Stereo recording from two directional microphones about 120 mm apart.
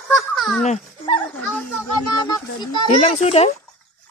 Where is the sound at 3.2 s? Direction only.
60° left (ahead or behind).